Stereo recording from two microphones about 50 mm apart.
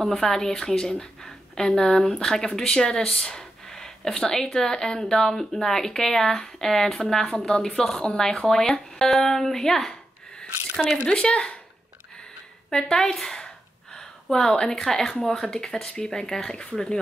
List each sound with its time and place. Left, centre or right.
0.0 s speech: centre
11.1 s speech: centre
12.6 s a woman's voice: centre